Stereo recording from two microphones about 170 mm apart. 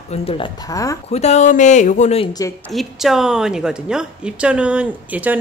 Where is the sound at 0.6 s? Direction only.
20° left (ahead or behind).